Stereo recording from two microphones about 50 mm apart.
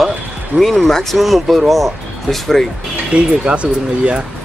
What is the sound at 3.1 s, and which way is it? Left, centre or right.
Speech, right.